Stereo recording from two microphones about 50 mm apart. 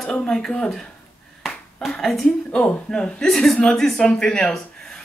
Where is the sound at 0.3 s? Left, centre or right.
Centre.